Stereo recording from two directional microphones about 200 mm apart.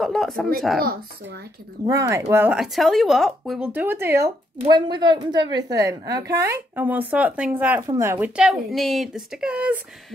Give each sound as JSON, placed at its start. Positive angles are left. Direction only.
{"t": 0.0, "sound": "a sound", "side_deg": 0}
{"t": 0.7, "sound": "speech", "side_deg": -50}
{"t": 1.9, "sound": "speech", "side_deg": -15}